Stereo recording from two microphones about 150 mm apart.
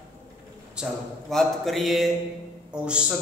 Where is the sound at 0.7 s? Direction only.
Centre (ahead or behind).